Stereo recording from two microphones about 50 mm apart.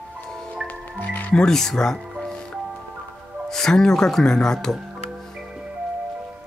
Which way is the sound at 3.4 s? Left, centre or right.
Centre.